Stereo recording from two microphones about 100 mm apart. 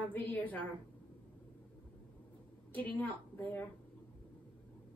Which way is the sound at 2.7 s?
15° left (ahead or behind).